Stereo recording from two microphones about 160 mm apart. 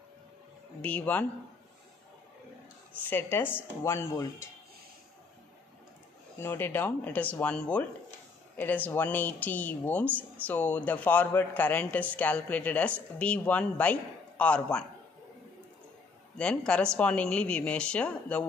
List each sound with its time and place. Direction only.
0.8 s speech: 10° left (ahead or behind)
3.1 s speech: 15° left (ahead or behind)
6.4 s speech: 15° left (ahead or behind)
16.3 s speech: 5° left (ahead or behind)